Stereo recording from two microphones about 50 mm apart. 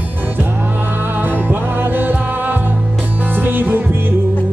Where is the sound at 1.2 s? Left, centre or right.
Right.